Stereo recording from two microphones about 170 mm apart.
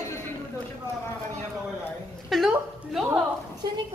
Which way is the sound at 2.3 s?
Centre (ahead or behind).